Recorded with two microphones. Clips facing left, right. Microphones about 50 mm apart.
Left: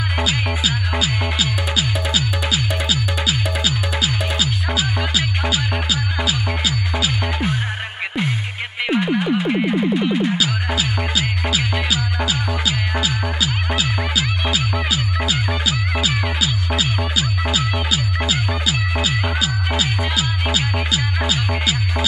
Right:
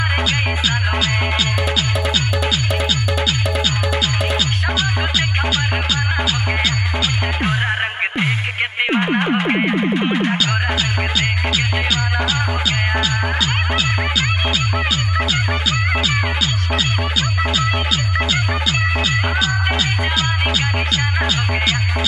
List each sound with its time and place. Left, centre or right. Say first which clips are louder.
1.4 s music: right 2 dB; centre
8.8 s music: even; right
11.1 s music: right 2 dB; centre
18.3 s music: right 2 dB; centre